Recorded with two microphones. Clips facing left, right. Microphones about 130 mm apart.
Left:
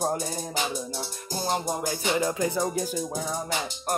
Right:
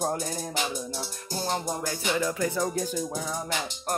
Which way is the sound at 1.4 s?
15° left (ahead or behind).